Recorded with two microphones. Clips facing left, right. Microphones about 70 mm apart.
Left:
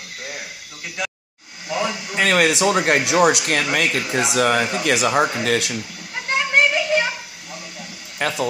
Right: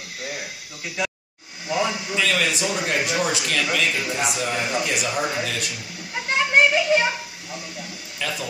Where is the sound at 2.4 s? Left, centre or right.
Left.